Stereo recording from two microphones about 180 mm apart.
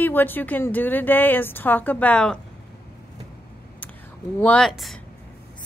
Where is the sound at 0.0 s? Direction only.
10° left (ahead or behind).